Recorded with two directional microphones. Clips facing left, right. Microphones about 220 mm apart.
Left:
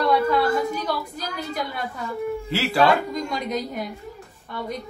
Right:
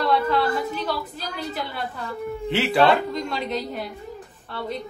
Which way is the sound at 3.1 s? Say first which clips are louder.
Even; 10° left (ahead or behind).